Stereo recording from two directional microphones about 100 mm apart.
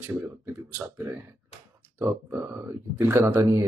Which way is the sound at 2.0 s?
25° right (ahead or behind).